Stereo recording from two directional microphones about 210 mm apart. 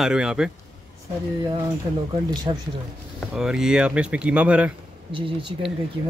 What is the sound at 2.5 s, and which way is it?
Speech, 20° right (ahead or behind).